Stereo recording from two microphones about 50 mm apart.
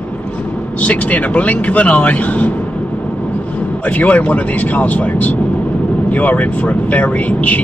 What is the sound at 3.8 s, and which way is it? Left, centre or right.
Speech, left.